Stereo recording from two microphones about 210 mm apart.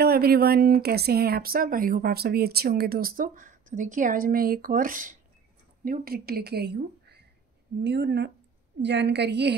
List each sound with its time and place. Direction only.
0.0 s a woman's voice: 45° right (ahead or behind)